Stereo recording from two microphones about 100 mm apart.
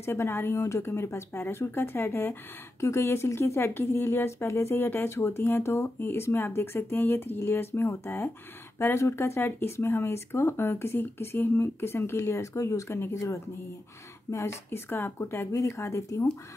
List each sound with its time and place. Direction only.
0.0 s speech: 25° left (ahead or behind)